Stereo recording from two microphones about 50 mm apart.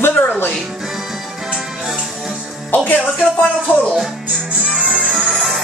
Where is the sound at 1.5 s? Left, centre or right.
Centre.